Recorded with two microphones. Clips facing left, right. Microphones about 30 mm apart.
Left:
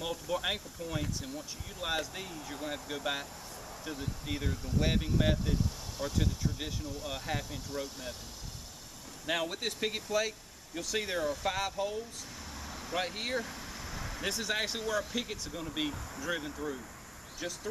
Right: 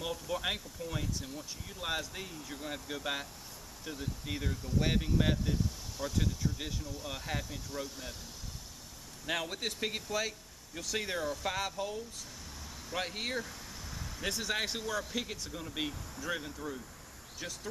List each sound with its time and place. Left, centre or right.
0.0 s speech: centre
9.2 s speech: centre
13.4 s vehicle: centre
14.2 s speech: centre